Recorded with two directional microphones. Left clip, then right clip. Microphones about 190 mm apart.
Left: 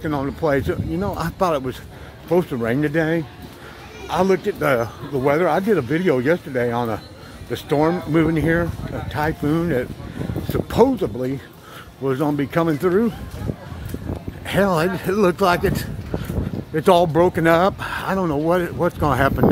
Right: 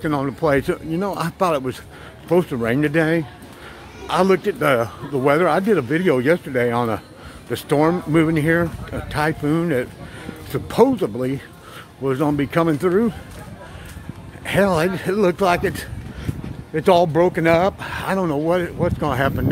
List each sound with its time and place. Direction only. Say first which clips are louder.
0.0 s speech: right 2 dB; 10° right (ahead or behind)
14.4 s speech: right 1 dB; 5° right (ahead or behind)